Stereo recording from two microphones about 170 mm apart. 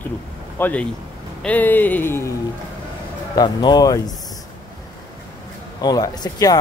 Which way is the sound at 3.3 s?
25° left (ahead or behind).